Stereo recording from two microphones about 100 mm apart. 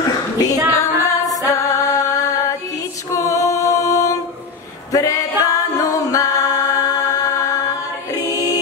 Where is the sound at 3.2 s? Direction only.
35° left (ahead or behind).